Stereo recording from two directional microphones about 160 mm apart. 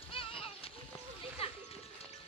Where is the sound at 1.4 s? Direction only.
35° left (ahead or behind).